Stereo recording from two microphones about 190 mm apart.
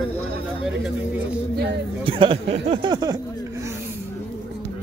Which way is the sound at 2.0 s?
30° right (ahead or behind).